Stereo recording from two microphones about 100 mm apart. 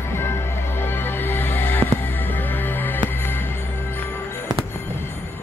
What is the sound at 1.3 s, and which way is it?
Music, 20° left (ahead or behind).